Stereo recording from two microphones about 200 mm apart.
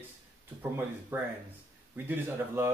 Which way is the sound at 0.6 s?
10° right (ahead or behind).